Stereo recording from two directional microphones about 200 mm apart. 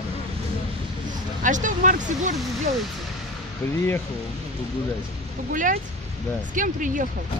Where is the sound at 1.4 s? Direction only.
40° right (ahead or behind).